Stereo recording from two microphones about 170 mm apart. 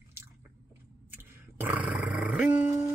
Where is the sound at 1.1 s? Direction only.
15° right (ahead or behind).